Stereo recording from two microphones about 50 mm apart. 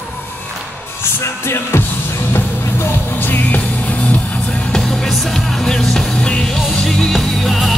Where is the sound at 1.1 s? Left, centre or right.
Left.